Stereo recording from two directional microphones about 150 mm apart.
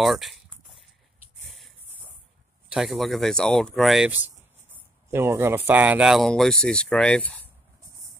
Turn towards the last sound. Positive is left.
turn(degrees=10)  # may be behind; listen again after turning